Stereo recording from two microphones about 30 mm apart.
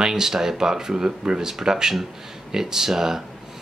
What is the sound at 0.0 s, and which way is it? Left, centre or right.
Speech, centre.